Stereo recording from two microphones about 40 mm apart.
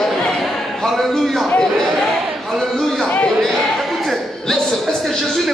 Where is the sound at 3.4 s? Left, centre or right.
Centre.